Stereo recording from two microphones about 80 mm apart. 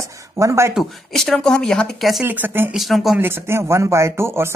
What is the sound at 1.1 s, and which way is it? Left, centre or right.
Speech, centre.